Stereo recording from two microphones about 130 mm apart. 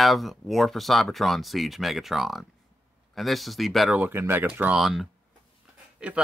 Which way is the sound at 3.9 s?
15° right (ahead or behind).